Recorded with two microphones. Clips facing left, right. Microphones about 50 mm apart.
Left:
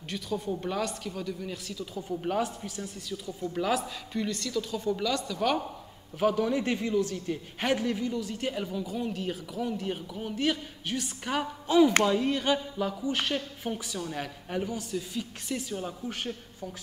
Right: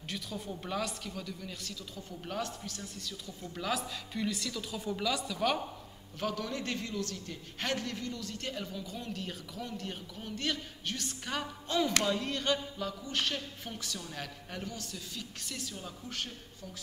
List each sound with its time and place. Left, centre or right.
0.1 s a woman's voice: centre
6.1 s a man's voice: centre